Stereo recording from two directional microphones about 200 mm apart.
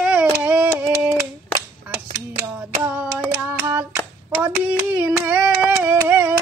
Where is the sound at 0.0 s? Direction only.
5° right (ahead or behind).